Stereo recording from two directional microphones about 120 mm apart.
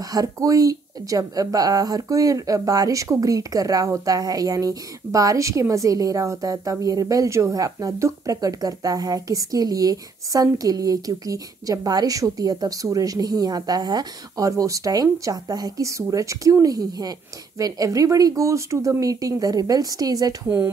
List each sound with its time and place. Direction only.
0.1 s speech: 30° right (ahead or behind)
20.4 s speech: 20° right (ahead or behind)